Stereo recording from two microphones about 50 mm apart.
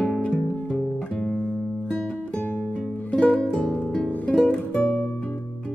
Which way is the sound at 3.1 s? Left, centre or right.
Left.